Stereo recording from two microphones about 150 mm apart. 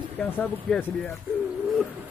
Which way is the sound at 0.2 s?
10° left (ahead or behind).